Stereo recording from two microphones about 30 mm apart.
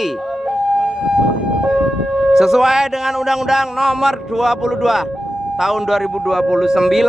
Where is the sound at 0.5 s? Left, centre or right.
Right.